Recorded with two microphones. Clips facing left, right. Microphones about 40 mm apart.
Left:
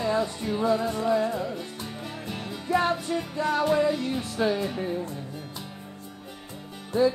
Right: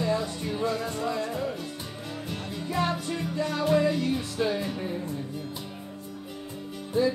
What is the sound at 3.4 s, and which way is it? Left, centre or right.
Music, centre.